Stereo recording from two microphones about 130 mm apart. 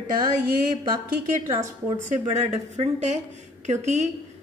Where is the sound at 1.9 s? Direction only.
65° right (ahead or behind).